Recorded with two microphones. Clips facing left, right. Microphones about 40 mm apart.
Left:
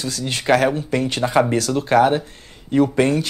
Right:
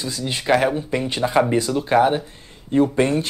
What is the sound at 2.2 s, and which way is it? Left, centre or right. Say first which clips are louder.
Speech: left 1 dB; left.